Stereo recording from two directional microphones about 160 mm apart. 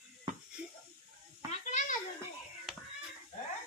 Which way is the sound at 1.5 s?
50° left (ahead or behind).